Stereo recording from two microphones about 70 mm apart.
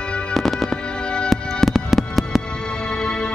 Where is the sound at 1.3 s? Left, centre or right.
Centre.